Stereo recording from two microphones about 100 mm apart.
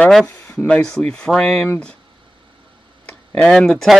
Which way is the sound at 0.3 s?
30° left (ahead or behind).